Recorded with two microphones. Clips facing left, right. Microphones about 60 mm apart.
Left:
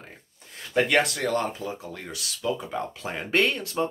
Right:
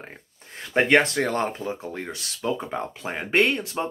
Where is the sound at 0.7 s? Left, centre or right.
Right.